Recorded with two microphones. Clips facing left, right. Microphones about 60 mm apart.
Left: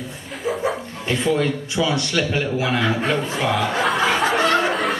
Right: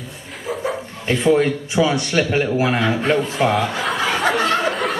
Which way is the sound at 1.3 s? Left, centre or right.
Right.